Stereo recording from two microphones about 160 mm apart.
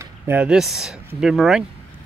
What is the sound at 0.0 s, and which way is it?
Speech, 10° right (ahead or behind).